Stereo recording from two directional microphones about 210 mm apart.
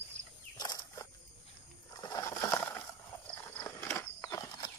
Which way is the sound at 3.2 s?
10° left (ahead or behind).